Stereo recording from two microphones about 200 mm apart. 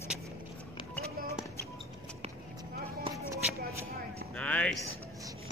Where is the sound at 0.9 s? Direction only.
15° left (ahead or behind).